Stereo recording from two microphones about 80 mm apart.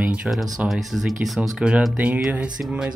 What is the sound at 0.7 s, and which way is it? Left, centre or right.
Speech, centre.